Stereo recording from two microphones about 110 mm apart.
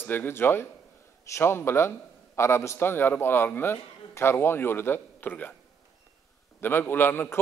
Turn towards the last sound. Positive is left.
turn(degrees=20)  # may be behind; listen again after turning